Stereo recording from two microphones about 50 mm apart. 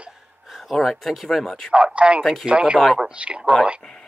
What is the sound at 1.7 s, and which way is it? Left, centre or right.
Speech, right.